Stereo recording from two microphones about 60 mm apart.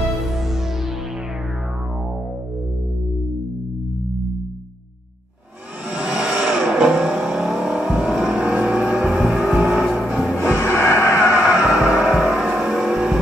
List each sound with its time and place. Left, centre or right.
0.0 s music: centre
5.9 s vehicle: centre
10.5 s a sound: left
11.6 s music: centre
12.2 s vehicle: centre